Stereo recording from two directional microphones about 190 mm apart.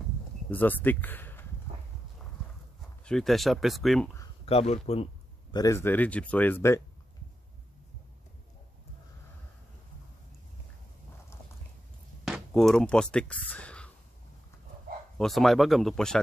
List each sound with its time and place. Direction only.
0.5 s speech: 10° left (ahead or behind)
3.1 s speech: centre (ahead or behind)
4.5 s a man's voice: 35° left (ahead or behind)
5.6 s speech: 15° left (ahead or behind)
12.3 s speech: centre (ahead or behind)
15.1 s speech: centre (ahead or behind)